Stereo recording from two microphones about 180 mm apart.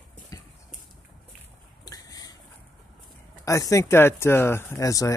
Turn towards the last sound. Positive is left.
turn(degrees=20)  # may be behind; listen again after turning